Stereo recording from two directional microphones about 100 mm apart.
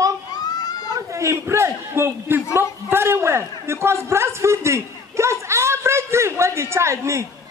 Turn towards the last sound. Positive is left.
turn(degrees=-30)  # may be behind; listen again after turning